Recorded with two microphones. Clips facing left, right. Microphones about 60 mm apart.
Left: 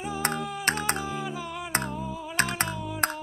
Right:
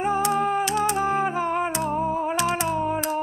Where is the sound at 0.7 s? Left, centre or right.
Left.